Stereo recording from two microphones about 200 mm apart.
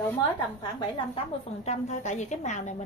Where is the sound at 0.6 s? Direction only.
25° left (ahead or behind).